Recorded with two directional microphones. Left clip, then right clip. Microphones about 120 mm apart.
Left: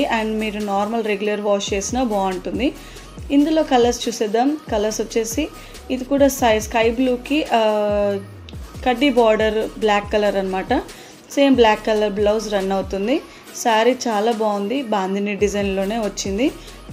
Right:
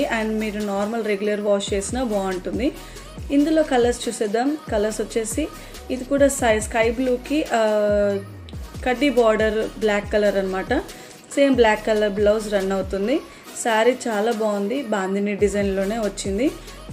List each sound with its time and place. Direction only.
0.0 s a woman's voice: 35° left (ahead or behind)